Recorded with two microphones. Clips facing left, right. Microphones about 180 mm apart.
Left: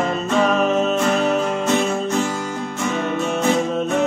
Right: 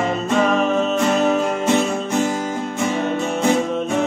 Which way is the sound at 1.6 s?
15° right (ahead or behind).